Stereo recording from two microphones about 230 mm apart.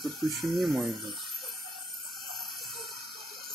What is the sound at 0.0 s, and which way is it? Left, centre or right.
Speech, centre.